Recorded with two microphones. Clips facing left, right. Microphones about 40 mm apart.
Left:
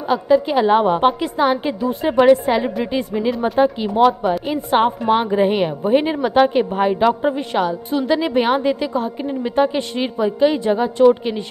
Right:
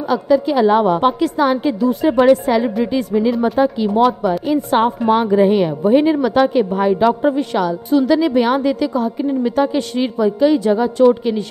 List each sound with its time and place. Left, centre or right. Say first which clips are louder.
0.1 s a woman's voice: even; left
3.2 s speech: right 5 dB; centre
3.5 s a woman's voice: right 1 dB; centre
7.1 s speech: right 2 dB; centre
7.3 s a woman's voice: right 2 dB; left
9.2 s a woman's voice: right 1 dB; centre